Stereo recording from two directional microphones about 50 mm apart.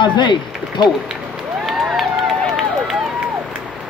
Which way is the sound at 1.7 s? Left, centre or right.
Centre.